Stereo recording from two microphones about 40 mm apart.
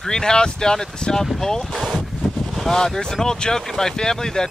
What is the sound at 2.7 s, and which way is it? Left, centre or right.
Speech, centre.